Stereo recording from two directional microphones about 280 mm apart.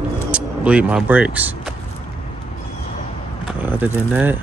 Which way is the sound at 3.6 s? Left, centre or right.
Centre.